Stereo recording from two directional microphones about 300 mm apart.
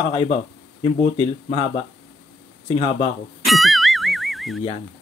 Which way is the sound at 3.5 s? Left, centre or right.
Centre.